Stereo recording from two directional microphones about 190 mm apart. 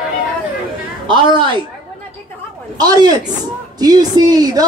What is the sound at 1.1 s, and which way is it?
Speech, 25° right (ahead or behind).